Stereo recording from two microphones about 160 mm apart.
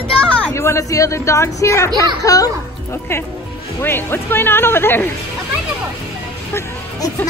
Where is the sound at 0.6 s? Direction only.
20° left (ahead or behind).